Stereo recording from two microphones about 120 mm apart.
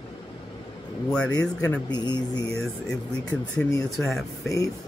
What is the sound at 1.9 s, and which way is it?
Speech, 35° left (ahead or behind).